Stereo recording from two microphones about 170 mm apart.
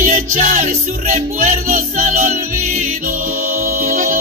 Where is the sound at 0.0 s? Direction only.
50° right (ahead or behind).